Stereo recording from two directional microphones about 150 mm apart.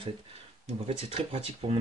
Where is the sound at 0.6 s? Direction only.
45° right (ahead or behind).